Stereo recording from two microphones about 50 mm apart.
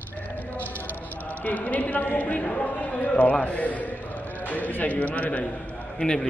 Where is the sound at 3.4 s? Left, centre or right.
Left.